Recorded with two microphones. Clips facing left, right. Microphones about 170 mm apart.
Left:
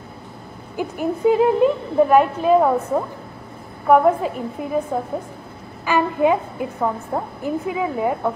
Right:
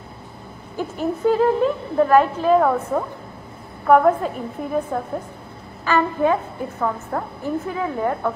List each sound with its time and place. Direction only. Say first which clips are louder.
0.7 s a woman's voice: left 1 dB; 10° left (ahead or behind)